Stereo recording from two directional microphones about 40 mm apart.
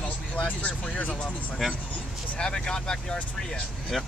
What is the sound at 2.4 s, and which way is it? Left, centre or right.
Speech, centre.